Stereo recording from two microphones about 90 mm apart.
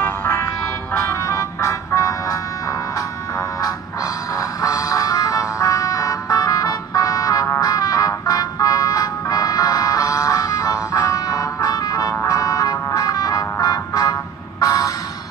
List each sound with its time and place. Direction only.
0.0 s music: 20° left (ahead or behind)
1.2 s music: 35° left (ahead or behind)
4.4 s music: 45° left (ahead or behind)
14.6 s a sound: 45° left (ahead or behind)